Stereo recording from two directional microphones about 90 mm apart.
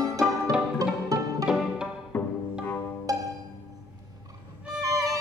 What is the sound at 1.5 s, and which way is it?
Music, 10° right (ahead or behind).